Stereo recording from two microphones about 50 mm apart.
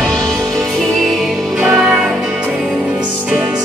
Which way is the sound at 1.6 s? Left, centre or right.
Centre.